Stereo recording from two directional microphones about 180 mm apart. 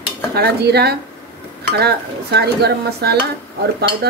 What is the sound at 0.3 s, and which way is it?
Speech, 60° right (ahead or behind).